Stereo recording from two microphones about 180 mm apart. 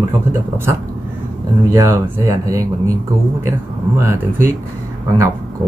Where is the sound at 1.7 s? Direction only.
15° right (ahead or behind).